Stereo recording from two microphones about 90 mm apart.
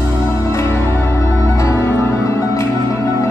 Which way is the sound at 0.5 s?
25° left (ahead or behind).